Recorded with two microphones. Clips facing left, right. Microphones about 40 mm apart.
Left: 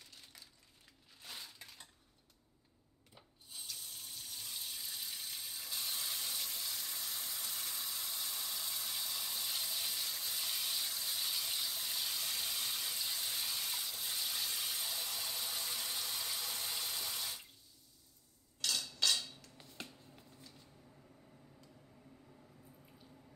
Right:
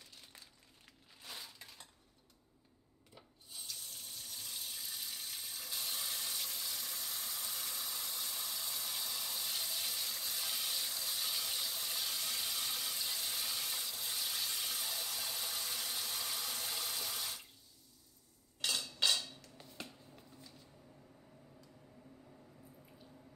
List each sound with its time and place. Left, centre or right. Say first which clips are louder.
1.2 s a sound: even; centre
3.2 s sink: even; centre
18.6 s dishes: right 1 dB; centre
19.5 s finger snapping: right 1 dB; centre